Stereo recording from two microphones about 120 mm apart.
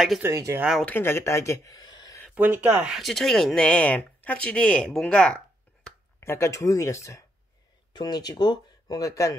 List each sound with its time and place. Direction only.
0.3 s speech: 30° right (ahead or behind)
0.8 s speech: 20° left (ahead or behind); by 2.1 s 35° left (ahead or behind)
2.3 s speech: 15° right (ahead or behind); by 5.4 s 10° left (ahead or behind)
6.1 s speech: 20° left (ahead or behind)
7.9 s speech: 35° left (ahead or behind)